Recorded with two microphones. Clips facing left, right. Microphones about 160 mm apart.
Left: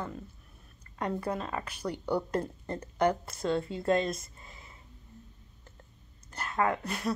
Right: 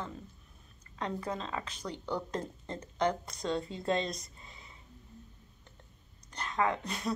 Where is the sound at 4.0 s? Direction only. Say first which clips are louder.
Left 4 dB; 5° left (ahead or behind).